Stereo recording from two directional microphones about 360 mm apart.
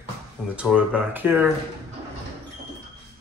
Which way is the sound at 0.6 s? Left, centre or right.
Centre.